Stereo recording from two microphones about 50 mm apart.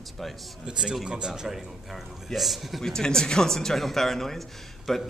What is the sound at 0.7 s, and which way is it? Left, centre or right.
A man's voice, centre.